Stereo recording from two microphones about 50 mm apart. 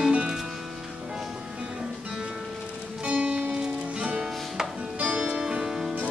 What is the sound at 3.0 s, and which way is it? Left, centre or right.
Music, right.